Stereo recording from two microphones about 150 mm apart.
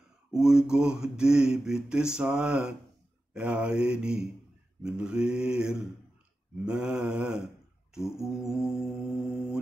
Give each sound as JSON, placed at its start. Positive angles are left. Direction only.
{"t": 0.3, "sound": "speech", "side_deg": -5}
{"t": 3.3, "sound": "mantra", "side_deg": -5}
{"t": 4.8, "sound": "speech", "side_deg": -5}